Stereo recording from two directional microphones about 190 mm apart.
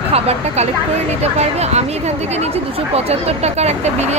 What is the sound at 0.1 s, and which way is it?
A woman's voice, 35° right (ahead or behind).